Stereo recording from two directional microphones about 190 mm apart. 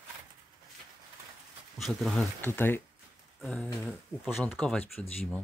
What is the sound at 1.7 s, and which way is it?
Speech, centre (ahead or behind).